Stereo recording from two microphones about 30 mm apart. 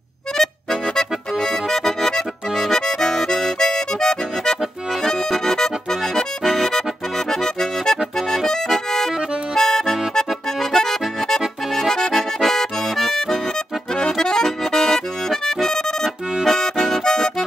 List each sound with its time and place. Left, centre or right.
0.4 s accordion: centre
13.9 s accordion: left